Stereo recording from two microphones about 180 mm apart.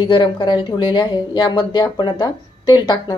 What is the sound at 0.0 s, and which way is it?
Speech, 25° left (ahead or behind).